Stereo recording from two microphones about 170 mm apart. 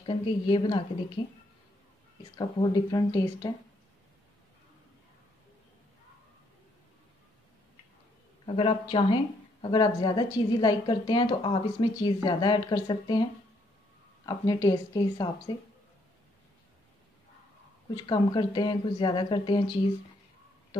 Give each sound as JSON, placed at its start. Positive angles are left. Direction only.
{"t": 0.0, "sound": "speech", "side_deg": 30}
{"t": 2.3, "sound": "speech", "side_deg": 25}
{"t": 8.5, "sound": "speech", "side_deg": 35}
{"t": 17.9, "sound": "speech", "side_deg": 25}